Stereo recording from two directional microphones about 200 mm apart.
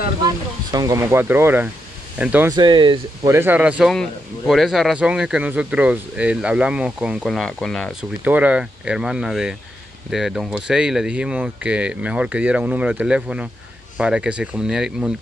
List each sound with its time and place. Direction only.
0.7 s speech: 20° right (ahead or behind)
2.5 s speech: 20° right (ahead or behind)
3.3 s a man's voice: 10° right (ahead or behind)
8.2 s a man's voice: 10° right (ahead or behind)